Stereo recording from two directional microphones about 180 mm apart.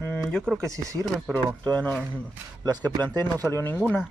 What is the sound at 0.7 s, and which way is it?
Speech, 15° right (ahead or behind).